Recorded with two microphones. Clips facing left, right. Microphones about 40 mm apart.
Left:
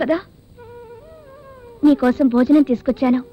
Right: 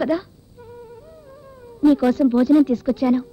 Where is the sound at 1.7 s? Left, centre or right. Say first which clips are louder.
Left 2 dB; left.